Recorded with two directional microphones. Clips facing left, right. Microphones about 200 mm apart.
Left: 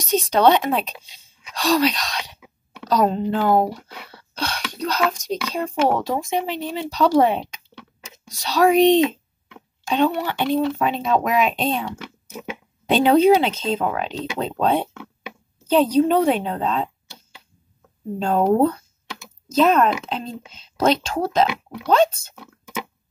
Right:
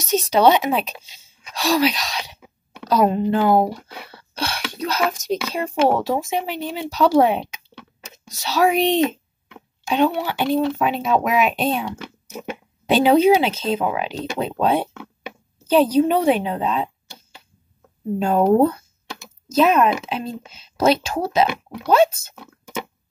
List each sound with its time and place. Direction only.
0.1 s speech: 5° right (ahead or behind)
18.2 s speech: 5° right (ahead or behind)